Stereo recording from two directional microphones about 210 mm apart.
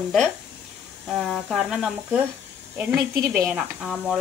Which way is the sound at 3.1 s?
45° right (ahead or behind).